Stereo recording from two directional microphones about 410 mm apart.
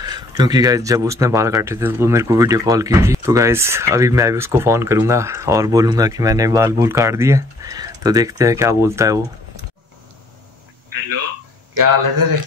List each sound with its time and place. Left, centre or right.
0.0 s speech: centre
11.7 s a man's voice: right